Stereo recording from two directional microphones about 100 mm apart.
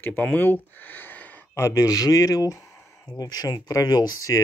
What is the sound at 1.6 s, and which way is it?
Speech, 40° left (ahead or behind).